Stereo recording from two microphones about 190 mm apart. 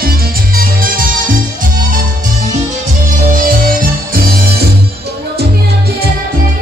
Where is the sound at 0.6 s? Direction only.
50° right (ahead or behind).